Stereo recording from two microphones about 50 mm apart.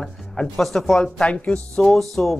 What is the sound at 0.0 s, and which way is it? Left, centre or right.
Speech, centre.